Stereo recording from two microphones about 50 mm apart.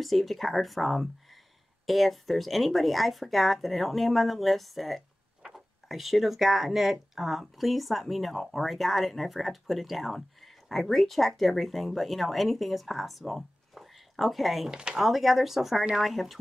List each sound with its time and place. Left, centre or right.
0.0 s speech: centre
14.7 s speech: centre
15.0 s speech: centre